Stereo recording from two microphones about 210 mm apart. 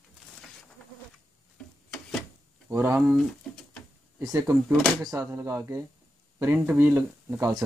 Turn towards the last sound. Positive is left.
turn(degrees=-15)  # may be behind; listen again after turning